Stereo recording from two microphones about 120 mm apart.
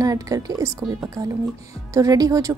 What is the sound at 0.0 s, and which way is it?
A woman's voice, 30° right (ahead or behind).